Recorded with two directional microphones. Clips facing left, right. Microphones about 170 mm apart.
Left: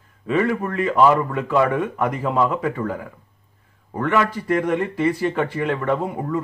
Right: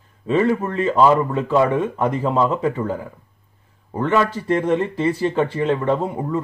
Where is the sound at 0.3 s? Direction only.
25° right (ahead or behind).